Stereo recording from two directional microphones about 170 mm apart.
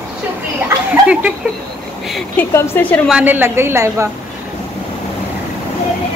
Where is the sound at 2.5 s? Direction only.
10° left (ahead or behind).